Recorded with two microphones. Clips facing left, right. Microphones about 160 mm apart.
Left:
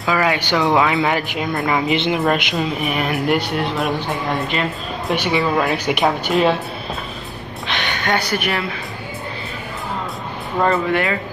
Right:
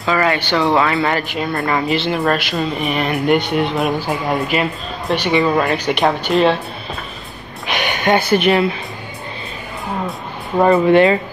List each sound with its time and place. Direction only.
0.0 s speech: 5° left (ahead or behind)
1.9 s speech: 15° left (ahead or behind)
2.6 s speech: 5° left (ahead or behind)
5.1 s speech: 5° left (ahead or behind)
7.7 s speech: 15° right (ahead or behind)
10.6 s speech: 20° right (ahead or behind)